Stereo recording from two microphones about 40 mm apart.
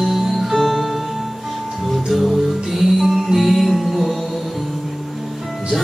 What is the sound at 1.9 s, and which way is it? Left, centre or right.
Music, centre.